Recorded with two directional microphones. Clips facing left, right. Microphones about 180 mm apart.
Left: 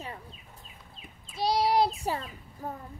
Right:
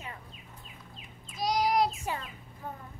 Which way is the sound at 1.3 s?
30° left (ahead or behind).